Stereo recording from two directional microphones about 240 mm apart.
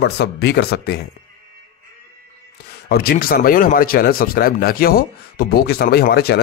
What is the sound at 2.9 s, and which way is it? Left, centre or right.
Speech, left.